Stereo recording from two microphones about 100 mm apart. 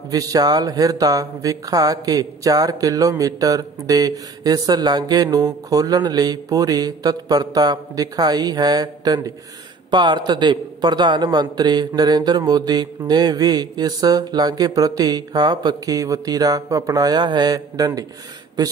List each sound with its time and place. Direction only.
0.1 s speech: 35° right (ahead or behind)